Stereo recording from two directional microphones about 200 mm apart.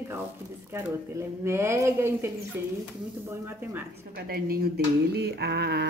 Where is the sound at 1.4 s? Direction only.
10° right (ahead or behind).